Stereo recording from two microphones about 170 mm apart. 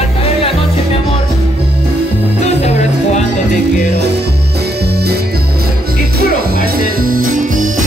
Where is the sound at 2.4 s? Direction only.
40° left (ahead or behind).